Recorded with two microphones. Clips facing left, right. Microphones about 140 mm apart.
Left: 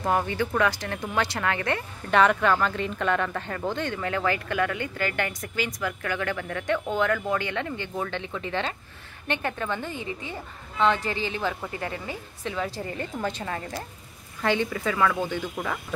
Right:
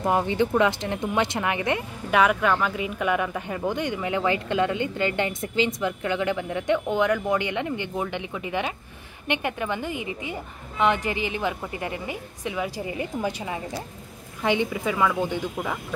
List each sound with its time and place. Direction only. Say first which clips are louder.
0.0 s speech: right 3 dB; 20° right (ahead or behind)